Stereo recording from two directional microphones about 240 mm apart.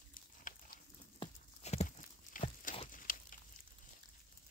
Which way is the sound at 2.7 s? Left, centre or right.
Left.